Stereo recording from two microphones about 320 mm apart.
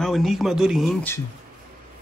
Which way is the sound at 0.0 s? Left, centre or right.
Centre.